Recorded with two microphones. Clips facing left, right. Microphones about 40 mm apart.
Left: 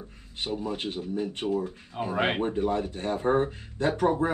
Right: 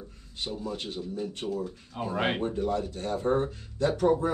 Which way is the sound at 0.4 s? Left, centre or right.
Left.